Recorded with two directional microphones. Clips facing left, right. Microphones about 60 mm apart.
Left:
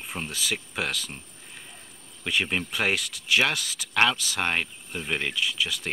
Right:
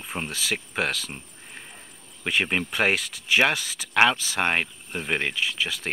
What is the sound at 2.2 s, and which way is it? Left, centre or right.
Speech, right.